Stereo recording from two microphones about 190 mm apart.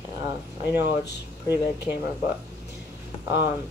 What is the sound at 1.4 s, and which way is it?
Speech, 10° right (ahead or behind).